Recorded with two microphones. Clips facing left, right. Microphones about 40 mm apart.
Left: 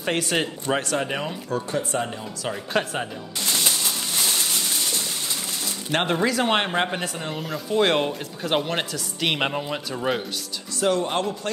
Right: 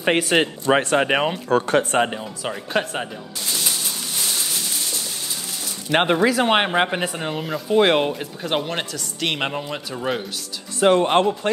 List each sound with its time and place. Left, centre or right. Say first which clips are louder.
0.2 s speech: right 5 dB; right
2.5 s speech: right 1 dB; centre
5.9 s speech: right 5 dB; right; by 10.2 s centre
10.8 s speech: right 7 dB; right